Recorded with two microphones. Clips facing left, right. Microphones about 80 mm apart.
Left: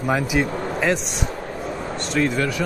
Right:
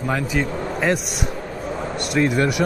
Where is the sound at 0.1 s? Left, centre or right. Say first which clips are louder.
Left 2 dB; centre.